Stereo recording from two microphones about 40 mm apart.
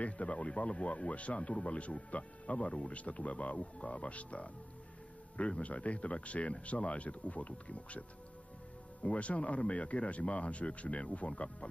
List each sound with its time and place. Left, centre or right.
0.0 s speech: left
9.0 s speech: left